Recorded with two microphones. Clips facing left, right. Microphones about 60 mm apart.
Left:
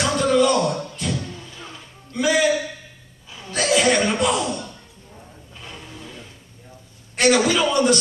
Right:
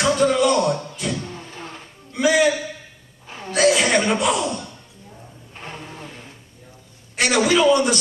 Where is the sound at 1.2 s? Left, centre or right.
Right.